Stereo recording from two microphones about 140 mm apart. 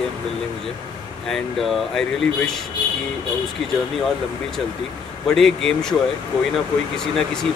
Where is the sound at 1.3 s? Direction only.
Centre (ahead or behind).